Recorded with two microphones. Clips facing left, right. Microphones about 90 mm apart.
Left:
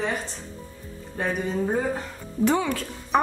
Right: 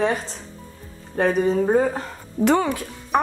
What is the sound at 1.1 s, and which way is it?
Speech, 55° right (ahead or behind).